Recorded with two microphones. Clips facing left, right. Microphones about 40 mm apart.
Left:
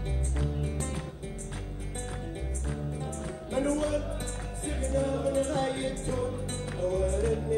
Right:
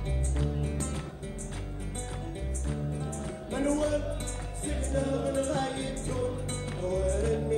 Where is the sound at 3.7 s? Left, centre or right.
Left.